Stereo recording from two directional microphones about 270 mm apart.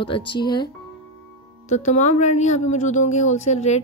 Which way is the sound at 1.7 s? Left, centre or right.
Left.